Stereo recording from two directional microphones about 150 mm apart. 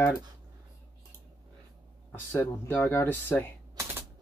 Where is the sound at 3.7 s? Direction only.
15° right (ahead or behind).